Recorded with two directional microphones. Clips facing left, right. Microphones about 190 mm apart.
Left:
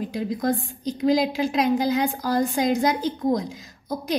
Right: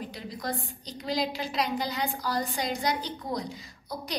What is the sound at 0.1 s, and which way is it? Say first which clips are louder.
A woman's voice: left 11 dB; 50° left (ahead or behind).